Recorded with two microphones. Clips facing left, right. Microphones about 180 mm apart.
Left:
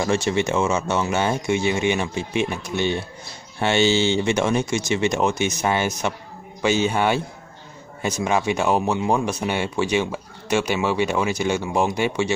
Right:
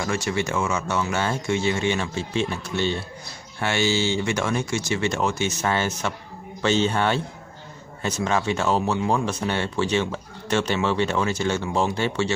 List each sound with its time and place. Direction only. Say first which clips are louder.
0.0 s speech: left 4 dB; 25° left (ahead or behind)